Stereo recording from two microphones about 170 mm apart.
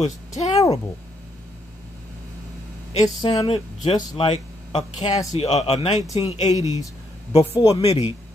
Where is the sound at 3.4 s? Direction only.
35° left (ahead or behind).